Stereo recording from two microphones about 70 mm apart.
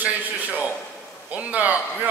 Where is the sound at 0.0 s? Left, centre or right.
Right.